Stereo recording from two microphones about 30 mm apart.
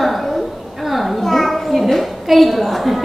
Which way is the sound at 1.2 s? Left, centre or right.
Centre.